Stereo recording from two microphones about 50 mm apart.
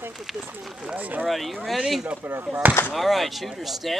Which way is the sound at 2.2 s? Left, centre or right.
Right.